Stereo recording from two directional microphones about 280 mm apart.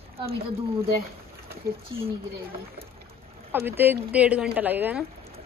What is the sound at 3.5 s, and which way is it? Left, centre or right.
A woman's voice, centre.